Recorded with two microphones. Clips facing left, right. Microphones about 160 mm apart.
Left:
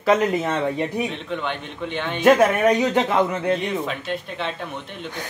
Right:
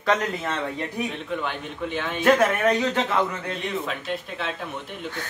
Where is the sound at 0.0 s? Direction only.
10° left (ahead or behind).